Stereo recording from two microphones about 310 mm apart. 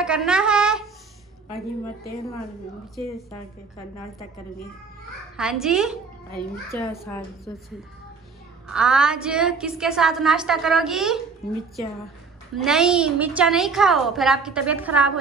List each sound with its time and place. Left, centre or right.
0.0 s a sound: centre
5.4 s a woman's voice: centre
6.7 s a woman's voice: centre
8.6 s a woman's voice: centre
12.5 s a woman's voice: centre